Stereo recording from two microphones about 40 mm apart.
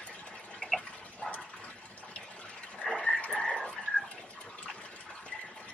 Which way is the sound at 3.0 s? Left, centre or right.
Left.